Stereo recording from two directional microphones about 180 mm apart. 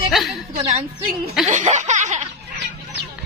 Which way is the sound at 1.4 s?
40° right (ahead or behind).